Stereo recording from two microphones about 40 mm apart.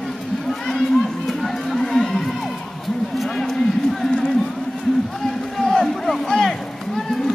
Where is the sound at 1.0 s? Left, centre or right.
Centre.